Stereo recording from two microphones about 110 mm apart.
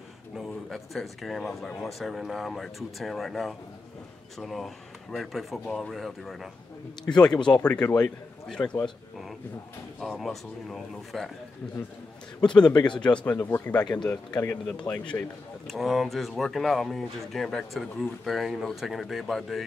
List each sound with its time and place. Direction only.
0.4 s a man's voice: centre (ahead or behind)
9.9 s speech: centre (ahead or behind)
12.4 s a man's voice: 10° left (ahead or behind)
13.7 s speech: 40° left (ahead or behind)
14.4 s a man's voice: 15° left (ahead or behind)
15.6 s speech: centre (ahead or behind)